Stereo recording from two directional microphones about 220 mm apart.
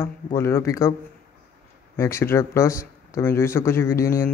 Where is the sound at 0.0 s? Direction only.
10° left (ahead or behind).